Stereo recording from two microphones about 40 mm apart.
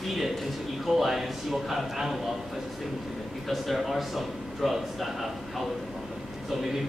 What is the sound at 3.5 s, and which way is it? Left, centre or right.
A man's voice, centre.